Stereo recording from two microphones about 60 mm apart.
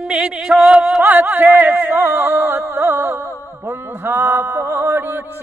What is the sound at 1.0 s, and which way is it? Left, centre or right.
Music, right.